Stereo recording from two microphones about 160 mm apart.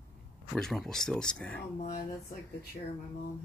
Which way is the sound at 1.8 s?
65° left (ahead or behind).